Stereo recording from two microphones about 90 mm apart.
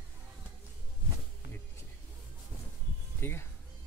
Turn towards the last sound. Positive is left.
turn(degrees=25)  # may be behind; listen again after turning